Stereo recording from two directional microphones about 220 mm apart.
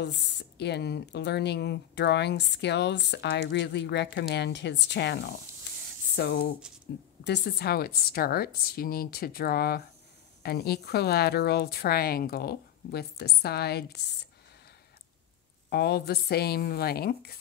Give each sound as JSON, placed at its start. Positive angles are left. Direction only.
{"t": 0.0, "sound": "speech", "side_deg": 50}
{"t": 15.7, "sound": "speech", "side_deg": 45}